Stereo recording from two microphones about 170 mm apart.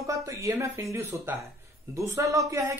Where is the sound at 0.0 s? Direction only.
20° right (ahead or behind).